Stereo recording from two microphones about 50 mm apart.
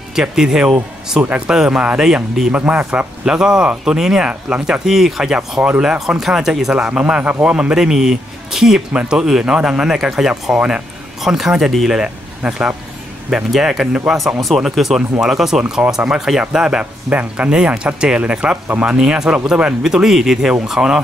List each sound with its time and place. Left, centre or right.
0.1 s speech: centre
2.5 s speech: right
3.3 s speech: centre
7.1 s speech: right; by 10.5 s centre
10.5 s speech: centre
11.1 s speech: centre
11.9 s speech: centre
13.3 s speech: centre
17.1 s speech: right
18.9 s speech: centre